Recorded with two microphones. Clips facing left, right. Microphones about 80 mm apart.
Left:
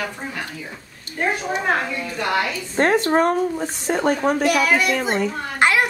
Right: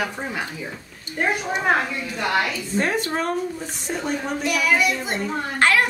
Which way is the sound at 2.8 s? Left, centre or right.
Left.